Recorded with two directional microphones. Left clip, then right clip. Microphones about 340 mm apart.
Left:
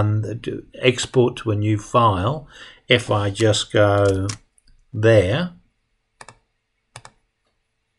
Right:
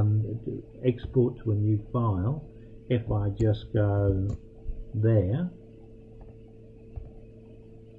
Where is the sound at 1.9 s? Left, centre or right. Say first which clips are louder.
Left 15 dB; centre.